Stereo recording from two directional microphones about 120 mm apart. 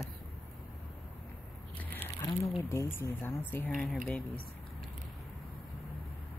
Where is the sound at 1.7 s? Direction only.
15° left (ahead or behind).